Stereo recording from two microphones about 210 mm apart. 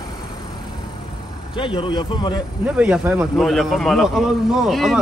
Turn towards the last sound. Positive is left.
turn(degrees=0)  # may be behind; listen again after turning